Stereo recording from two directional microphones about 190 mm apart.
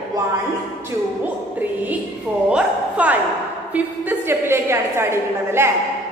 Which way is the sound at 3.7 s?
10° right (ahead or behind).